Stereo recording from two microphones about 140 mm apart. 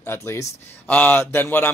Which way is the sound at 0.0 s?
15° left (ahead or behind).